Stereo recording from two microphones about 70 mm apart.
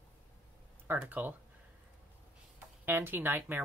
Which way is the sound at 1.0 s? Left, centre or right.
Right.